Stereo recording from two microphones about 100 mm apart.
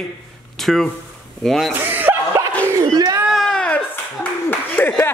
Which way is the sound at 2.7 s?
35° right (ahead or behind).